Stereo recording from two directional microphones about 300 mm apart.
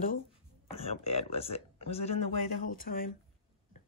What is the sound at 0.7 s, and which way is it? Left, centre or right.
Speech, centre.